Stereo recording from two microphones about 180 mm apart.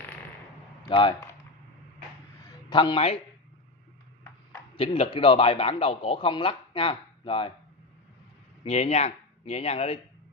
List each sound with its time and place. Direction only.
0.8 s speech: 25° left (ahead or behind)
2.7 s a man's voice: 25° left (ahead or behind)
4.7 s a man's voice: 35° left (ahead or behind)
8.6 s speech: 35° left (ahead or behind)